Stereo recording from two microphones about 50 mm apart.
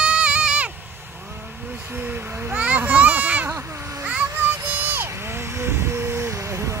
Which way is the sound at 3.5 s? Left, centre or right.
Right.